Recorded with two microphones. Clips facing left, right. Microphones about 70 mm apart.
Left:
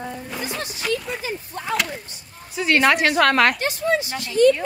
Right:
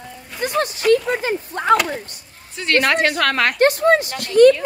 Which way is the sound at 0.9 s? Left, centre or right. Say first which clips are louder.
Right 8 dB; right.